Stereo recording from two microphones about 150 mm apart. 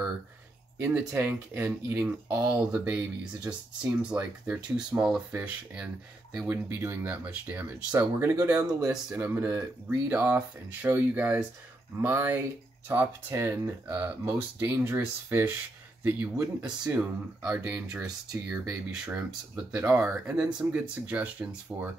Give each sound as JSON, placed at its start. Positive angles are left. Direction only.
{"t": 0.9, "sound": "speech", "side_deg": -15}